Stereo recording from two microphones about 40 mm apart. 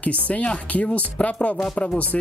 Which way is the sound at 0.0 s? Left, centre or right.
Left.